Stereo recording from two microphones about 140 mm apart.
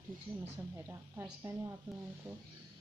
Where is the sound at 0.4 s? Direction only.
15° right (ahead or behind).